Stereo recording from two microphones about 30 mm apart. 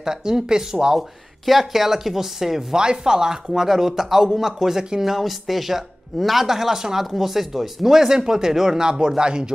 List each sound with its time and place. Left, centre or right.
0.0 s speech: centre
1.4 s speech: centre
2.7 s speech: right